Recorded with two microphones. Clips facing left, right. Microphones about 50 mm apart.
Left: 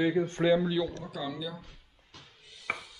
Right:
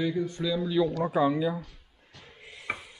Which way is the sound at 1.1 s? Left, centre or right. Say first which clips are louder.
Right 11 dB; right.